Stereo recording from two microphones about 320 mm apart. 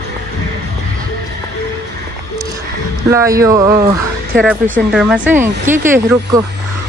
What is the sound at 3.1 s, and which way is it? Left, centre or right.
Speech, centre.